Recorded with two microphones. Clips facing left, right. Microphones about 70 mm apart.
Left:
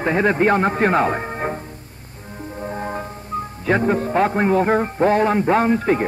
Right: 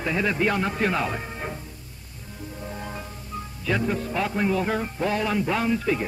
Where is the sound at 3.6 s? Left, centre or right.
Left.